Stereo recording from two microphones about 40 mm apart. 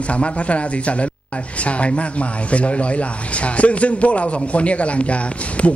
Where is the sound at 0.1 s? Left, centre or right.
Left.